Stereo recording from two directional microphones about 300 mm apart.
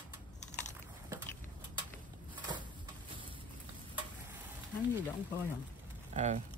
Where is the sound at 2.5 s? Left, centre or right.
Centre.